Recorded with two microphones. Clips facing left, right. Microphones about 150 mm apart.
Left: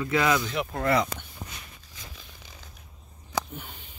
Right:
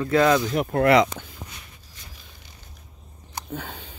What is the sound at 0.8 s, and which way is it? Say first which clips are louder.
Speech: right 8 dB; 90° right.